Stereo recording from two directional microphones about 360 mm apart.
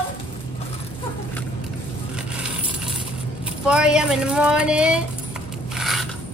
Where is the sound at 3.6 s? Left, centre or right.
Centre.